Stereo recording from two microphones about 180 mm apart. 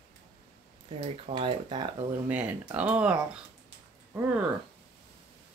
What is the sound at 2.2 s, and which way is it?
Speech, 10° right (ahead or behind).